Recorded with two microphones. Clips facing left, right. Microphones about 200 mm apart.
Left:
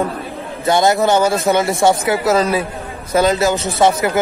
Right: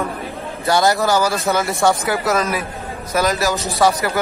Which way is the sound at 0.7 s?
20° left (ahead or behind).